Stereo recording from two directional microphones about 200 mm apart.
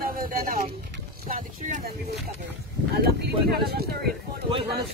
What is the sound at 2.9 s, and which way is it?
Speech, 50° right (ahead or behind).